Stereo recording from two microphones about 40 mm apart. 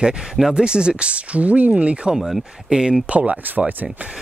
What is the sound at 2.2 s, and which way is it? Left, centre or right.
Speech, centre.